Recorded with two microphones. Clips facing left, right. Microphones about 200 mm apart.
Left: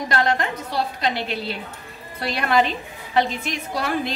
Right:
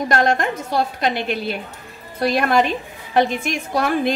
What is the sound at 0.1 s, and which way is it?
A woman's voice, 50° right (ahead or behind).